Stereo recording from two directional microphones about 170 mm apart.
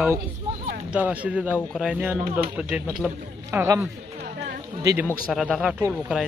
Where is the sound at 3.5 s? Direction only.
15° right (ahead or behind).